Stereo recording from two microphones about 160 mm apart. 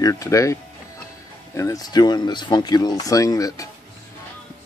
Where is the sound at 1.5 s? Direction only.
20° left (ahead or behind).